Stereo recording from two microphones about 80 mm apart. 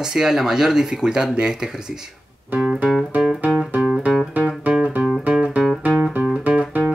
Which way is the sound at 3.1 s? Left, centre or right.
Centre.